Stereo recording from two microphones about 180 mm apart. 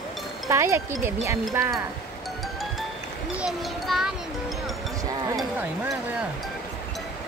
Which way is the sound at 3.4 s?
Centre (ahead or behind).